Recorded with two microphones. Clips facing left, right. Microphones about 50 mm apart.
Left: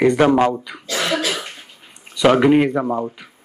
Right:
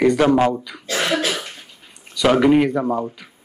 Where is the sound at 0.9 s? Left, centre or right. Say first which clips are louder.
Even; centre.